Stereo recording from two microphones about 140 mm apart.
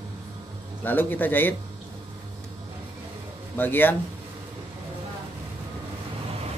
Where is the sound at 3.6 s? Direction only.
15° left (ahead or behind).